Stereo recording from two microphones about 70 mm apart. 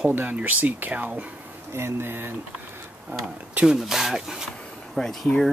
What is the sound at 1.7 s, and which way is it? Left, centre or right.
Speech, right.